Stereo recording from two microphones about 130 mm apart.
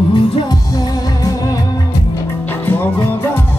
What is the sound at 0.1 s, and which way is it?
Music, 30° left (ahead or behind).